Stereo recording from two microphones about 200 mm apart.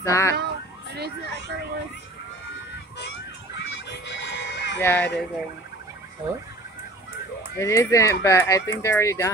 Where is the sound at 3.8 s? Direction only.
60° left (ahead or behind).